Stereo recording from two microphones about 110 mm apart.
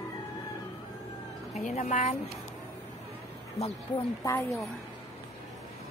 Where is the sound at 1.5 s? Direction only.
85° left.